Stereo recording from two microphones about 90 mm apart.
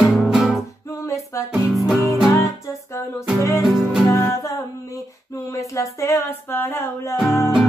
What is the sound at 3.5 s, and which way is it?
Music, 5° right (ahead or behind).